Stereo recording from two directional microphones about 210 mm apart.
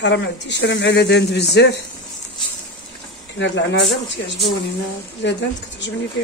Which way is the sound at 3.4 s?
60° left (ahead or behind).